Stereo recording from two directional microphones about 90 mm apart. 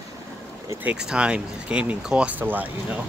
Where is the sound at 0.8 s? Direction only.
10° right (ahead or behind).